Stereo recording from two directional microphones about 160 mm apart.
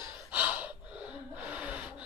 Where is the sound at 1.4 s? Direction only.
10° right (ahead or behind).